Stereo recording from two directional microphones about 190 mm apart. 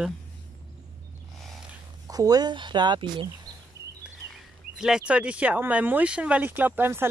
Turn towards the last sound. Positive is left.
turn(degrees=-10)  # may be behind; listen again after turning